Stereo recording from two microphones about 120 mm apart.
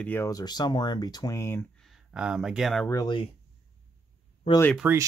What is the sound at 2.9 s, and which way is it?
Speech, 35° left (ahead or behind).